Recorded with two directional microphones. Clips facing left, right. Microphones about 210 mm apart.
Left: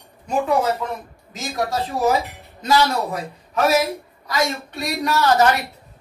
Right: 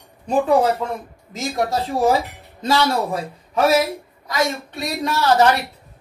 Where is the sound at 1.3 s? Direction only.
30° right (ahead or behind).